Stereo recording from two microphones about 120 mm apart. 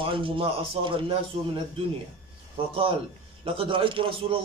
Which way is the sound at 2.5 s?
50° right (ahead or behind).